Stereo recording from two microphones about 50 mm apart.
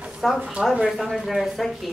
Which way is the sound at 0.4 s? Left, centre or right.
Right.